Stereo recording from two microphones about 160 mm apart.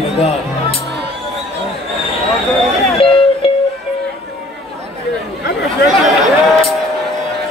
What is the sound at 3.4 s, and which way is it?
Music, 35° left (ahead or behind).